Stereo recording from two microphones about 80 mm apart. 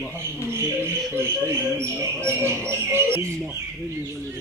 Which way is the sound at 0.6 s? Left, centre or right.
Right.